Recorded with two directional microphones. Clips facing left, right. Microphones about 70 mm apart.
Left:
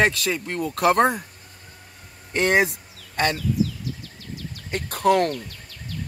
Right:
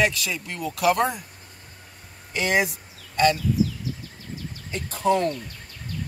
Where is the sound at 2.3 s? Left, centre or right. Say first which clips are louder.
Left 3 dB; left.